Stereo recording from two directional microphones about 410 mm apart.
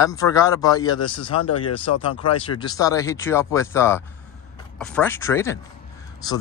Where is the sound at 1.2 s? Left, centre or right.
Left.